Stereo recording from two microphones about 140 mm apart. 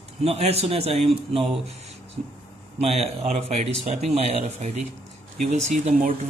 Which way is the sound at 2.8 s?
45° right (ahead or behind).